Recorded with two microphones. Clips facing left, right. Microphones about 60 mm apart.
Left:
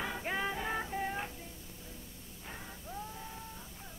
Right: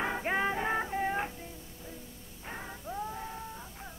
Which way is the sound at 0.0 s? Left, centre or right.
Right.